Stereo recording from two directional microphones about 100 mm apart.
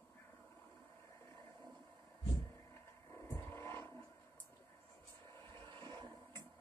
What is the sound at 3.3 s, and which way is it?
Vehicle, 30° left (ahead or behind).